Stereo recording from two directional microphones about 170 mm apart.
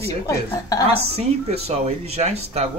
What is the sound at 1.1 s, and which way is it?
Speech, 40° right (ahead or behind).